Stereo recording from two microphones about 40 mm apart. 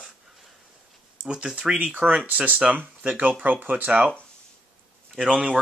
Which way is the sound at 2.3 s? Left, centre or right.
Right.